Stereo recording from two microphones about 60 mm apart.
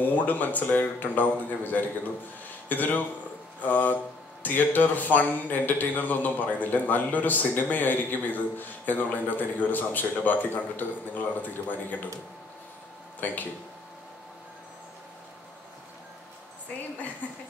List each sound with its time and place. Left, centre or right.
0.0 s speech: left
13.2 s speech: left
17.2 s speech: left